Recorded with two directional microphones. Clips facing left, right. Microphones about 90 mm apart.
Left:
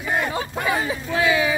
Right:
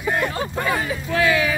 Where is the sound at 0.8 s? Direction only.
20° left (ahead or behind).